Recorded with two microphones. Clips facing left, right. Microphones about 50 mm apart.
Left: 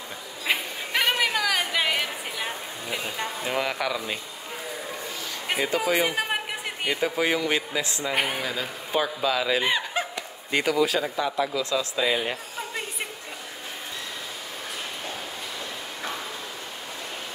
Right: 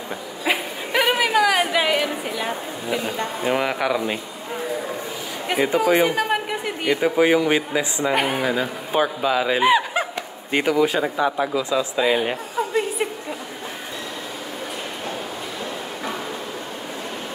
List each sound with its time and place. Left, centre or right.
0.5 s a sound: centre
3.4 s speech: centre
5.9 s a man's voice: centre
6.1 s a sound: centre
7.0 s speech: centre
8.1 s speech: centre
8.4 s speech: centre
9.6 s a sound: centre
10.5 s speech: right